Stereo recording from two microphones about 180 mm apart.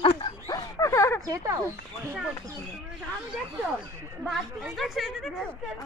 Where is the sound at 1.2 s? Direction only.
20° right (ahead or behind).